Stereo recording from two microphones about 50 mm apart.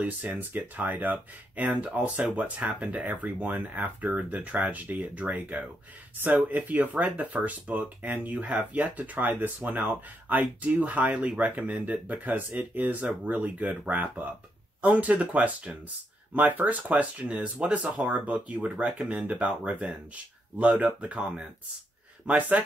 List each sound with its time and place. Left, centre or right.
0.0 s speech: right